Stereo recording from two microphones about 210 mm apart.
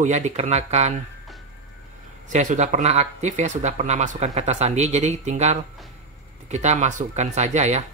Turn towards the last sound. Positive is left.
turn(degrees=-35)  # may be behind; listen again after turning